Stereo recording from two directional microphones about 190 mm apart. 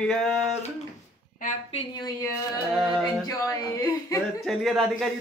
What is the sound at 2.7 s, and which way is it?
Speech, centre (ahead or behind).